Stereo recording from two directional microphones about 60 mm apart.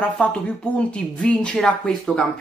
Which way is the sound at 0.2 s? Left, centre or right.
Left.